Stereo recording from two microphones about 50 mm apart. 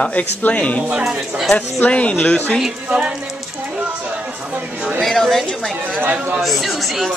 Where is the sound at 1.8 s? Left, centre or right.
Left.